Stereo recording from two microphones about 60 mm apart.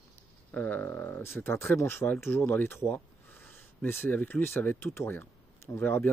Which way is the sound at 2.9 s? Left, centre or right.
Left.